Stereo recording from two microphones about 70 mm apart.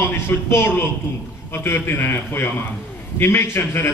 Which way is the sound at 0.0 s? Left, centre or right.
Left.